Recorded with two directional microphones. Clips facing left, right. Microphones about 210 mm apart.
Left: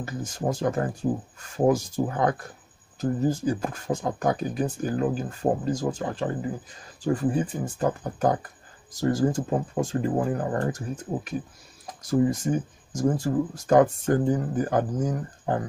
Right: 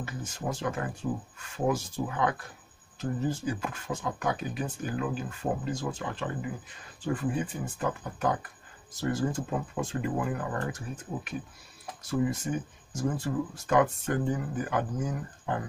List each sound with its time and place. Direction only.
0.0 s speech: 40° left (ahead or behind)